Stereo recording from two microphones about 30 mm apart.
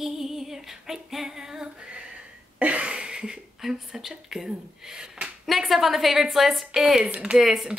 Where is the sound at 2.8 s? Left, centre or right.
Right.